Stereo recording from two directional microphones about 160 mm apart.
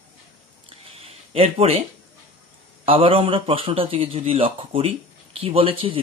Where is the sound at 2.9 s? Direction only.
35° right (ahead or behind).